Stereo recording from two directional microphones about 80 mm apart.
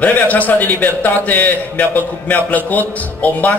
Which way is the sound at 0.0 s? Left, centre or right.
Centre.